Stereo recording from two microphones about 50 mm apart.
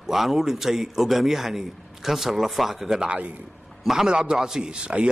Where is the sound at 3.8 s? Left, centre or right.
Centre.